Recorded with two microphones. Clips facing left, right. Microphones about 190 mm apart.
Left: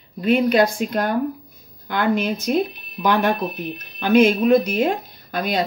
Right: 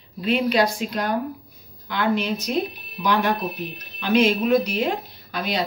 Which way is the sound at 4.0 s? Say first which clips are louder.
Left 4 dB; 50° left (ahead or behind).